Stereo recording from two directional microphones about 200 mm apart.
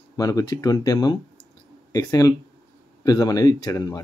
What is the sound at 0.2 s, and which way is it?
Speech, 15° left (ahead or behind).